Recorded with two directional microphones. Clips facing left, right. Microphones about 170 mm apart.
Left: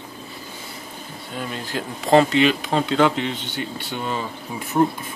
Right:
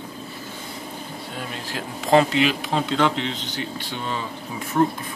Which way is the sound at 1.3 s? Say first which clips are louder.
Left 5 dB; centre (ahead or behind).